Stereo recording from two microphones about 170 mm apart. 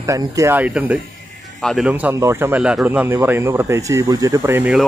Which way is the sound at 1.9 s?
10° right (ahead or behind).